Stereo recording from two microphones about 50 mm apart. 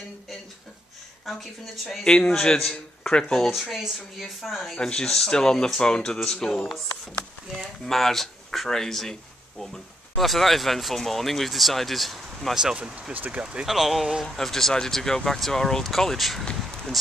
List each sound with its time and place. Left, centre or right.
1.2 s speech: centre
2.5 s speech: centre
3.6 s speech: centre
4.7 s speech: centre
7.8 s speech: centre
12.7 s speech: right
13.4 s speech: right
13.7 s speech: centre